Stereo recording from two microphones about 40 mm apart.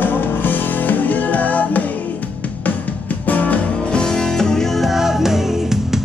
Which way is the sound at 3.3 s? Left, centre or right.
Left.